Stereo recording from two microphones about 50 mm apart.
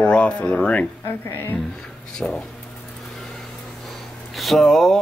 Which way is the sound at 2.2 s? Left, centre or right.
Left.